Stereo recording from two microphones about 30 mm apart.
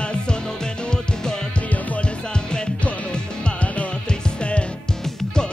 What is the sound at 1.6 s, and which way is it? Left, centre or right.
Music, left.